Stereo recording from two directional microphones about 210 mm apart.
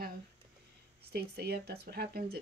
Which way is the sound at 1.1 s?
50° right (ahead or behind).